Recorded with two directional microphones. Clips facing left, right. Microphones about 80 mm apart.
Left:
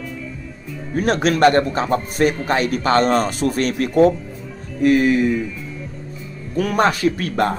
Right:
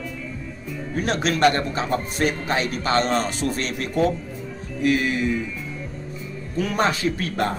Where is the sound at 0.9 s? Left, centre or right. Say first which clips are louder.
Left 5 dB; left.